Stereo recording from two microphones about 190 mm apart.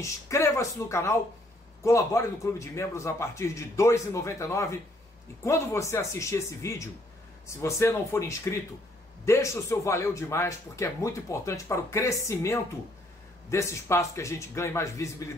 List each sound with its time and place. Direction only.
0.0 s a man's voice: 15° left (ahead or behind)